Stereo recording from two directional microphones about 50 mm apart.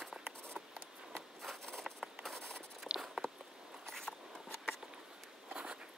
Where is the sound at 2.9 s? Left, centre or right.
Centre.